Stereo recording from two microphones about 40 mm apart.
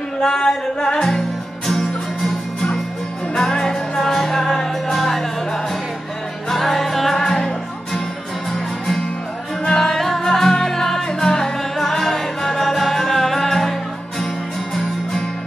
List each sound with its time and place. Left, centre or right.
0.2 s music: centre
7.2 s music: centre
9.7 s music: centre